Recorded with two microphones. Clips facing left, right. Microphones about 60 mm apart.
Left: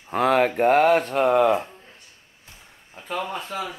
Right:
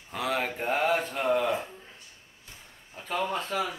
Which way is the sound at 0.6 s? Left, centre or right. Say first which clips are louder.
Left 8 dB; left.